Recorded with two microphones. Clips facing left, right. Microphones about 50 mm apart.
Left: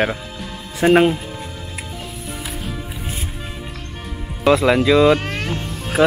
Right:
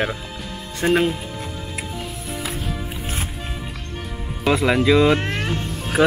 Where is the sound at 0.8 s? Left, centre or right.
Left.